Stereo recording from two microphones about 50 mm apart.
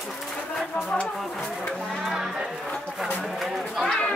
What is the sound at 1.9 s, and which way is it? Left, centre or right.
Music, centre.